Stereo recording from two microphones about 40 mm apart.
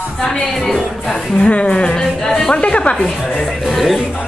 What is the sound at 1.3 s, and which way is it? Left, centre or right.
Speech, left.